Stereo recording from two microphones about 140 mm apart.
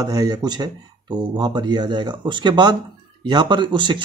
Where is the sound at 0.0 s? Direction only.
25° right (ahead or behind).